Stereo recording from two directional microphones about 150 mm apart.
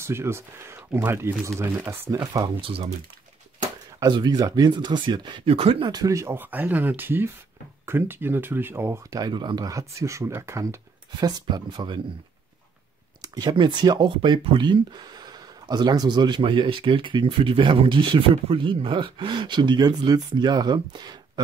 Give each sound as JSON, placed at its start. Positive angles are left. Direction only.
{"t": 0.0, "sound": "speech", "side_deg": -15}
{"t": 2.1, "sound": "speech", "side_deg": -30}
{"t": 4.0, "sound": "speech", "side_deg": -30}
{"t": 13.2, "sound": "speech", "side_deg": -25}